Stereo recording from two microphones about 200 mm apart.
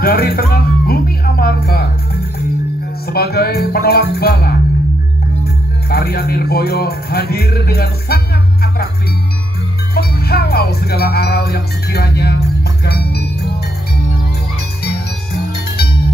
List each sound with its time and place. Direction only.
0.0 s music: 50° left (ahead or behind)
3.1 s speech: 50° left (ahead or behind)
9.9 s music: 50° left (ahead or behind)